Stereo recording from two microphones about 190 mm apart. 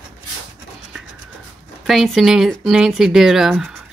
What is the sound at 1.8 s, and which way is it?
Speech, centre (ahead or behind).